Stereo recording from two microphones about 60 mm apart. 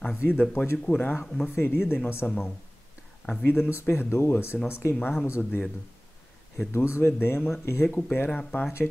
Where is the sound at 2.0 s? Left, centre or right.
Left.